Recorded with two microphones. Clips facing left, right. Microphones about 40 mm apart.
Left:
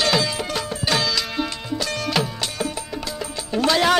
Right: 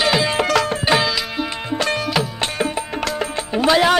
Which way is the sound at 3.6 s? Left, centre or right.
Centre.